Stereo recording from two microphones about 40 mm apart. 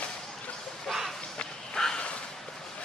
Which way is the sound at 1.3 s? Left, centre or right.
Centre.